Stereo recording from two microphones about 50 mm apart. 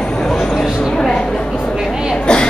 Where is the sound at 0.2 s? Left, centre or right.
Centre.